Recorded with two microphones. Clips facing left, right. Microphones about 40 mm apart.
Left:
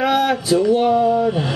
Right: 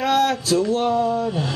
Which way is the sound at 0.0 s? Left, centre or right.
Centre.